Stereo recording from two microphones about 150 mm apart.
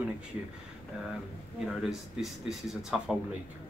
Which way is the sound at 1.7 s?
Centre (ahead or behind).